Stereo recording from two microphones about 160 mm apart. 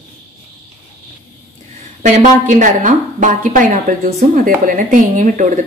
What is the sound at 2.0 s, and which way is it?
A woman's voice, 50° right (ahead or behind).